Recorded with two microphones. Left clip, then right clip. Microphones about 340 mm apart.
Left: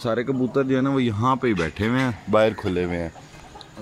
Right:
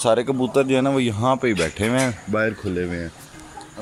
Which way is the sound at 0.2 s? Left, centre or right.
Right.